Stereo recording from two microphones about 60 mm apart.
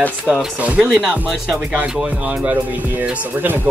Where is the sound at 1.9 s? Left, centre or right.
Centre.